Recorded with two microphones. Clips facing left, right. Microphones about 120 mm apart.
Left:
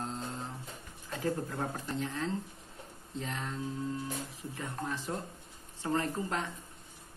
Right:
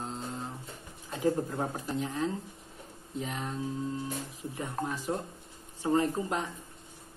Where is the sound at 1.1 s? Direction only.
20° right (ahead or behind).